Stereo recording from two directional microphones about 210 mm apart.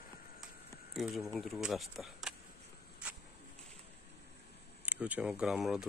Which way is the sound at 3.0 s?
5° right (ahead or behind).